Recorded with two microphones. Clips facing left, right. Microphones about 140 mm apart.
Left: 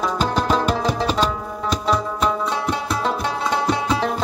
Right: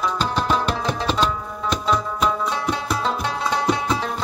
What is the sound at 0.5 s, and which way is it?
Music, 40° left (ahead or behind).